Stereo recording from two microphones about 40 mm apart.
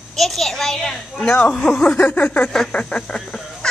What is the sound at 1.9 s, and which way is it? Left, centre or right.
Speech, left.